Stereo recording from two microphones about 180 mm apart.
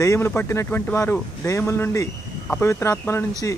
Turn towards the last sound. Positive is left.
turn(degrees=15)  # may be behind; listen again after turning